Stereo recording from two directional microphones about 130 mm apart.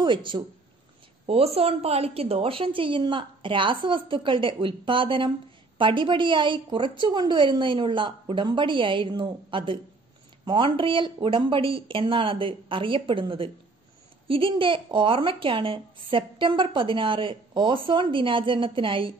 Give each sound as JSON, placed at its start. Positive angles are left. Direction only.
{"t": 0.0, "sound": "speech", "side_deg": -40}
{"t": 1.2, "sound": "speech", "side_deg": -50}